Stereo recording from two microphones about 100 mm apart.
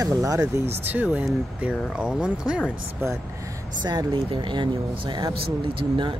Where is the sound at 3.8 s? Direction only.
45° right (ahead or behind).